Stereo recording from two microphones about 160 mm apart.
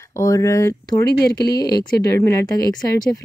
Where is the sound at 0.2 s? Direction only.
20° left (ahead or behind).